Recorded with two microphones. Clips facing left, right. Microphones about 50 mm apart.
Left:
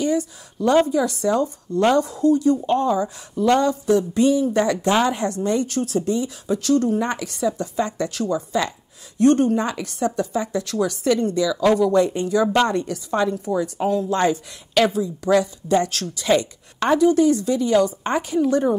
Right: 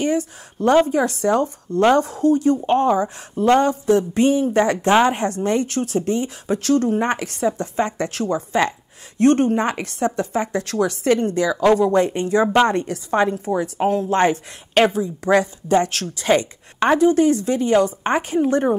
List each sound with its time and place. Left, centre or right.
0.8 s a woman's voice: right
11.5 s a woman's voice: right